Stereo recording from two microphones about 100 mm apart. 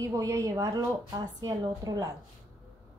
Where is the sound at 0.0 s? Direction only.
30° right (ahead or behind).